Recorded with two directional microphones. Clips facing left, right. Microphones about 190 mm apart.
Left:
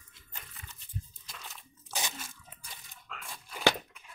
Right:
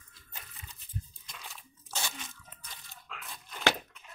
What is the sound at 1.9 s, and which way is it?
Crunch, 15° left (ahead or behind).